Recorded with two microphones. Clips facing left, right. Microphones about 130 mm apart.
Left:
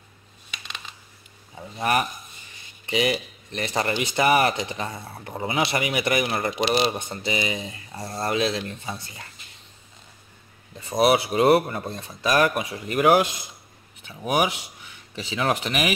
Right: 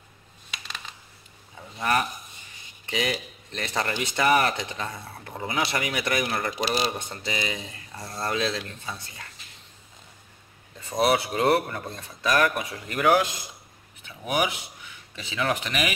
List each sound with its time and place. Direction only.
1.6 s speech: 15° left (ahead or behind)
10.9 s speech: 15° left (ahead or behind)